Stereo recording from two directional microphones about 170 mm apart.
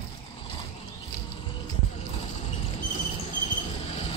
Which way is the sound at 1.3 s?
30° left (ahead or behind).